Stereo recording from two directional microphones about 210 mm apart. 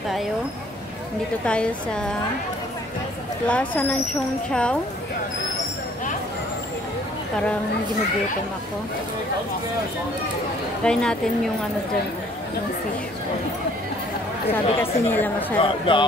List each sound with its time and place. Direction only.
1.4 s a woman's voice: 5° left (ahead or behind)
3.4 s a woman's voice: 5° left (ahead or behind)
10.8 s a woman's voice: 5° left (ahead or behind)
14.8 s a woman's voice: 10° left (ahead or behind)
15.5 s speech: 25° left (ahead or behind)